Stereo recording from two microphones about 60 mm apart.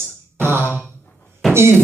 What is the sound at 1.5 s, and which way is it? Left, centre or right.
Speech, right.